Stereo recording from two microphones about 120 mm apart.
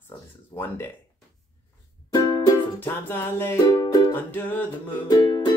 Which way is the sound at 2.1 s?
35° left (ahead or behind).